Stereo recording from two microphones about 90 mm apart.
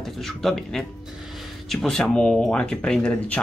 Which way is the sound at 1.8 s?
10° left (ahead or behind).